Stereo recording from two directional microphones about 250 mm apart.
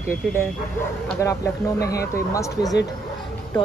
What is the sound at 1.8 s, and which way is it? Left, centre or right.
Speech, left.